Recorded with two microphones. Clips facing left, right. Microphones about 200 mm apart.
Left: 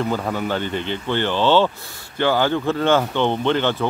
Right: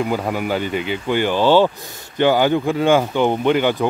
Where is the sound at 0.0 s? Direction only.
10° right (ahead or behind).